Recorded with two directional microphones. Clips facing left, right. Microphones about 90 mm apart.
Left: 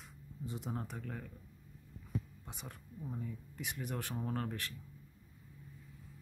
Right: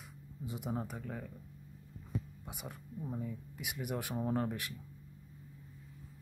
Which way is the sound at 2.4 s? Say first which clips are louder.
Right 3 dB; 10° right (ahead or behind).